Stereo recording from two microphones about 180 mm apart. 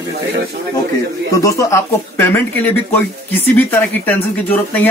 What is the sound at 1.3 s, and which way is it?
Speech, 15° left (ahead or behind).